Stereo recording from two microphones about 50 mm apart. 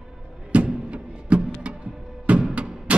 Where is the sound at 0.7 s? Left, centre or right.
Centre.